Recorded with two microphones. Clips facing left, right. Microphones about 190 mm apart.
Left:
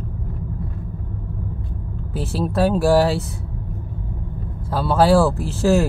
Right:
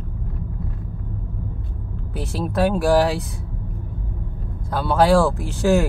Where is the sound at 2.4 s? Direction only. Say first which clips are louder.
Left 1 dB; 30° left (ahead or behind).